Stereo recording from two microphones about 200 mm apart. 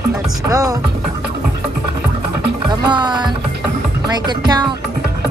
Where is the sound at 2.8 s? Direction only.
20° right (ahead or behind).